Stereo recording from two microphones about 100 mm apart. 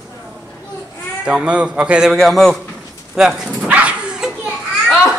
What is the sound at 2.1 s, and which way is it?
Speech, 5° left (ahead or behind).